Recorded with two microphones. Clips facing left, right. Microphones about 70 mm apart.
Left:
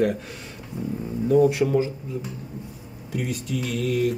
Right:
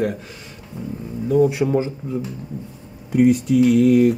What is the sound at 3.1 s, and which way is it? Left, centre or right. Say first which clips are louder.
Mantra: right 13 dB; right.